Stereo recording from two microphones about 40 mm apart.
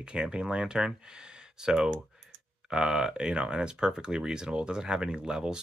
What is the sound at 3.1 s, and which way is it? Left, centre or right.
Speech, right.